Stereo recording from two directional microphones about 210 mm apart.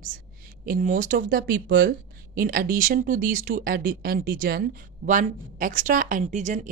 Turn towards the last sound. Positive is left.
turn(degrees=-35)  # may be behind; listen again after turning